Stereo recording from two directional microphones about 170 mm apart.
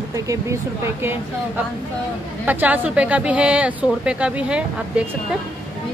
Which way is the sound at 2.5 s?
10° right (ahead or behind).